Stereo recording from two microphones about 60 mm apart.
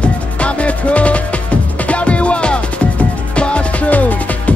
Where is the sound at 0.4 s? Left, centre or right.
Left.